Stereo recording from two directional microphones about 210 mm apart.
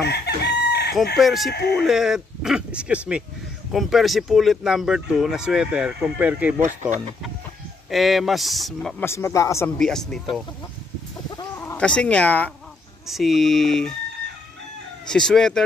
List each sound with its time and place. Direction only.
0.0 s chicken: 50° left (ahead or behind)
1.1 s speech: centre (ahead or behind)
1.5 s speech: 50° left (ahead or behind)
1.8 s speech: centre (ahead or behind)
6.6 s speech: 35° right (ahead or behind)
7.9 s speech: centre (ahead or behind)
9.0 s a man's voice: 15° left (ahead or behind)
9.8 s speech: 5° left (ahead or behind)
11.3 s chicken: 15° left (ahead or behind)
13.1 s speech: centre (ahead or behind)
15.0 s speech: 5° left (ahead or behind)